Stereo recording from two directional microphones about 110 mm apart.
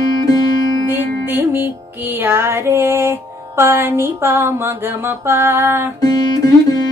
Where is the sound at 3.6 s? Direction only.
20° right (ahead or behind).